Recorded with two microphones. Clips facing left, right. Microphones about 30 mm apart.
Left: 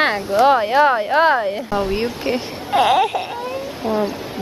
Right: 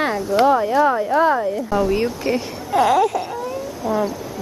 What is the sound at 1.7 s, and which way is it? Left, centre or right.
Speech, left.